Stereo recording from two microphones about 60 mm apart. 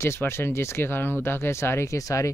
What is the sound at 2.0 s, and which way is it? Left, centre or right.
Speech, left.